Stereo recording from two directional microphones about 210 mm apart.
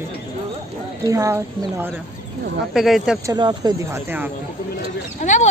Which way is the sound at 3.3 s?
20° right (ahead or behind).